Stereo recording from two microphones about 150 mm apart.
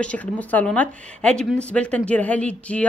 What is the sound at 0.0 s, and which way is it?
Speech, 10° left (ahead or behind).